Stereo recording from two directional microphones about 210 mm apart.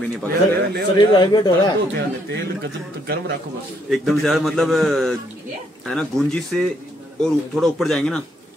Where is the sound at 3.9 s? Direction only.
Centre (ahead or behind).